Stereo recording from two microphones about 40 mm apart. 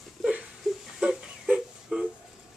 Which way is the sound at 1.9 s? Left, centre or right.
Right.